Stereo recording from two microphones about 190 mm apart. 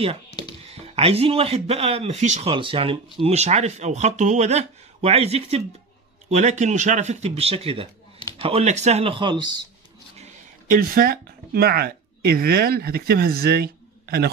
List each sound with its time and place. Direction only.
0.7 s speech: 35° right (ahead or behind)
10.1 s speech: 40° right (ahead or behind)